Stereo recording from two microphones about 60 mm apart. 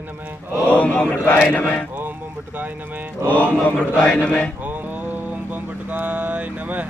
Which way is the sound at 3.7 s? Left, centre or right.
Centre.